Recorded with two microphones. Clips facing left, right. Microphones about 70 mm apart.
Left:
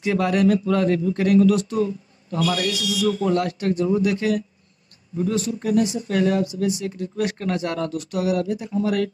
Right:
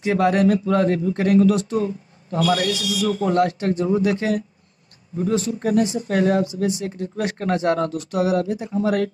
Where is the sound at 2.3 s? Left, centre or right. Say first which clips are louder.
Right 3 dB; right.